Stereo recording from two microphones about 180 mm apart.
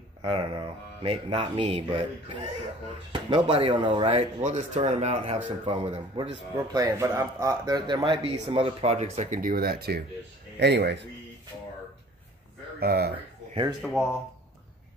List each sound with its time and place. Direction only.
0.2 s speech: 30° right (ahead or behind)
6.5 s speech: 20° right (ahead or behind); by 11.1 s 70° right (ahead or behind)
12.8 s speech: 60° right (ahead or behind)
13.8 s speech: centre (ahead or behind)